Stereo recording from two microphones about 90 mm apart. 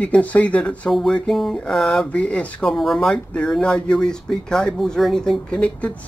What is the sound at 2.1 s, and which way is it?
Speech, 15° left (ahead or behind).